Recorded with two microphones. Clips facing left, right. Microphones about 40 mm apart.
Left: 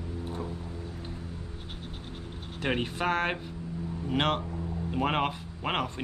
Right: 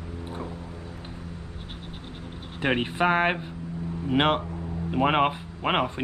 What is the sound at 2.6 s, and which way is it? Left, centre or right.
Speech, right.